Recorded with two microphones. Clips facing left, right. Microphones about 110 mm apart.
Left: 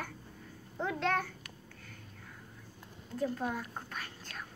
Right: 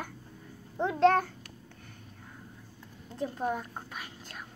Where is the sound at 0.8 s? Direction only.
30° right (ahead or behind).